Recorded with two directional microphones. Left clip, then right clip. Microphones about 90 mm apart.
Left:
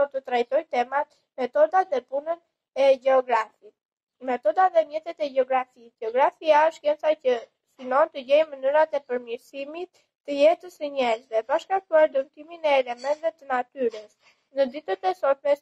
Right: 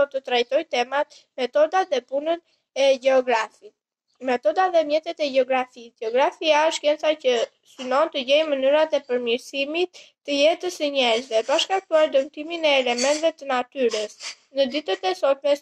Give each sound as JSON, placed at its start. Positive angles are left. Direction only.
{"t": 0.0, "sound": "a woman's voice", "side_deg": -20}
{"t": 4.3, "sound": "a woman's voice", "side_deg": -20}